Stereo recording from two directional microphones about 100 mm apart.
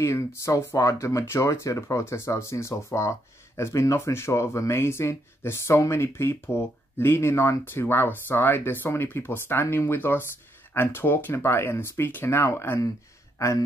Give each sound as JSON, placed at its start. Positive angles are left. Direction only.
{"t": 0.0, "sound": "speech", "side_deg": 30}